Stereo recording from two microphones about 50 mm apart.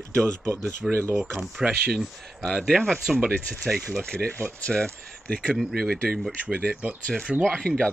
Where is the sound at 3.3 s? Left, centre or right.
Left.